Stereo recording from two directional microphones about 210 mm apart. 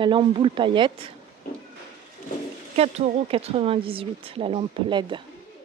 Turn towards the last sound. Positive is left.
turn(degrees=-25)  # may be behind; listen again after turning